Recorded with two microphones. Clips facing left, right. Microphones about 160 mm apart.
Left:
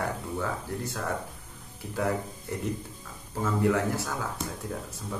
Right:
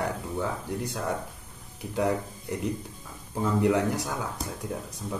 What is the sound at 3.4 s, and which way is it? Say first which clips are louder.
Speech: right 2 dB; 15° right (ahead or behind).